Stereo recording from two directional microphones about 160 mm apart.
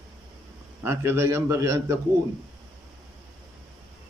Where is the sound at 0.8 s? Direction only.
15° right (ahead or behind).